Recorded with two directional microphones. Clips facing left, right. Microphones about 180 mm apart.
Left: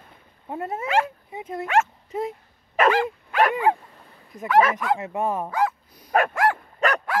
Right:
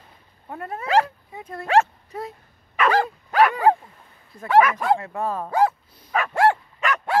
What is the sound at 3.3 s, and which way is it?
Dog, 40° right (ahead or behind).